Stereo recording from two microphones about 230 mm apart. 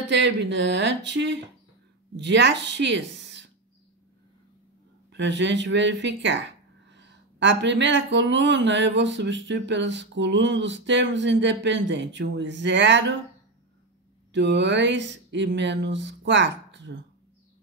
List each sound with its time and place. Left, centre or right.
0.1 s speech: right
5.1 s speech: right
14.3 s a sound: right